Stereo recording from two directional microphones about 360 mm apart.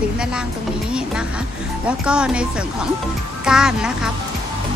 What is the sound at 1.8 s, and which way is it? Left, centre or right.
Speech, centre.